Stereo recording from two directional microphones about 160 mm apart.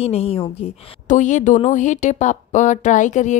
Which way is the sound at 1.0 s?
50° left (ahead or behind).